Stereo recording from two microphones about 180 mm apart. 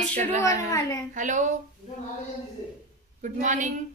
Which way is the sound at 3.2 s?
45° right (ahead or behind).